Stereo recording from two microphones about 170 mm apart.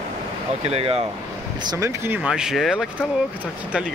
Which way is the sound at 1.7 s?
20° right (ahead or behind).